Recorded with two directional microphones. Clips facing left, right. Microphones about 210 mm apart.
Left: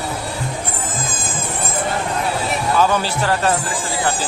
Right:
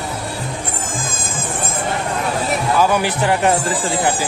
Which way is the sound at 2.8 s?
15° right (ahead or behind).